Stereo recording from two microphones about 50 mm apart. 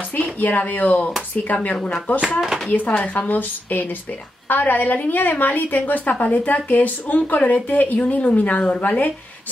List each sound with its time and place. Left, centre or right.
0.1 s a woman's voice: left